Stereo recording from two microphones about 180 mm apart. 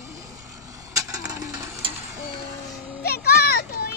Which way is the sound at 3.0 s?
60° left (ahead or behind).